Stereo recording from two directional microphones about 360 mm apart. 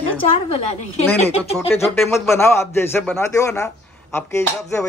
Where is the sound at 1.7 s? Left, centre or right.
Centre.